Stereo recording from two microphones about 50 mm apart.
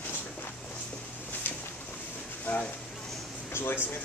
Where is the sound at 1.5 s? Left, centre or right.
Left.